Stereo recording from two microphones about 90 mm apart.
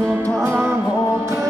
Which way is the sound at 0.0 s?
30° right (ahead or behind).